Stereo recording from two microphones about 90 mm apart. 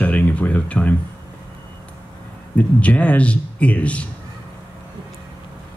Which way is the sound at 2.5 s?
15° left (ahead or behind).